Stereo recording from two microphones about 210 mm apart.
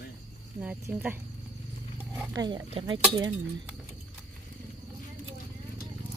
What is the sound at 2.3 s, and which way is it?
Speech, 20° right (ahead or behind).